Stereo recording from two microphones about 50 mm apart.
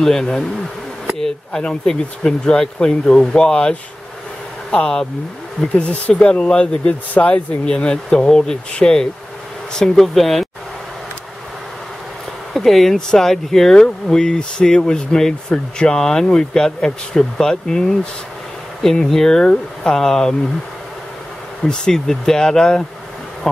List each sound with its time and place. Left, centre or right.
0.0 s speech: centre
5.8 s speech: left
7.6 s speech: centre
12.5 s speech: centre
19.0 s speech: centre
21.6 s speech: centre